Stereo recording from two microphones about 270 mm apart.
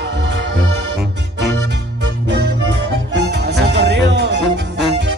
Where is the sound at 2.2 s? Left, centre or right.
Right.